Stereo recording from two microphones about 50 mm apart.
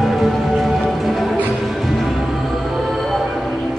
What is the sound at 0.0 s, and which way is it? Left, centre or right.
Music, centre.